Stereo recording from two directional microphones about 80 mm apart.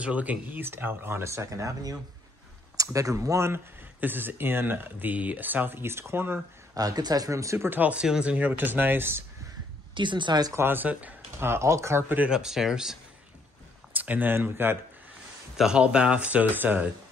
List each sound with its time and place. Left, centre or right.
0.0 s speech: centre
6.7 s speech: right
7.2 s speech: right
7.8 s speech: centre; by 9.2 s right
9.9 s speech: right
10.5 s speech: right
11.3 s speech: right
12.2 s speech: centre
13.9 s speech: right
15.5 s speech: centre